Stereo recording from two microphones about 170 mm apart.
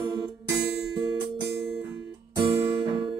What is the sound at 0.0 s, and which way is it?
Music, 25° right (ahead or behind).